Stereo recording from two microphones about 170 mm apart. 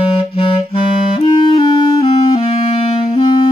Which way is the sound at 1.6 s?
25° left (ahead or behind).